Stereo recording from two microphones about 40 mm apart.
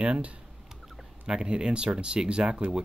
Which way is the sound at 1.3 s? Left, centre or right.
Centre.